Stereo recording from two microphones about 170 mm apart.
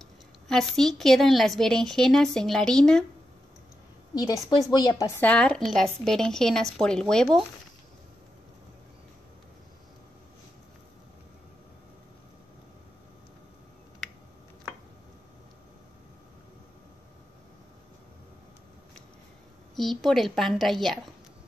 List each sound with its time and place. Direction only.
0.0 s a woman's voice: centre (ahead or behind)
4.1 s a woman's voice: 20° left (ahead or behind)
5.3 s a woman's voice: 5° left (ahead or behind)
19.7 s a woman's voice: centre (ahead or behind)